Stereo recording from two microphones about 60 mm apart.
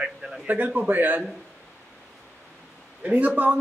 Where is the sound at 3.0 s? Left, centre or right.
Right.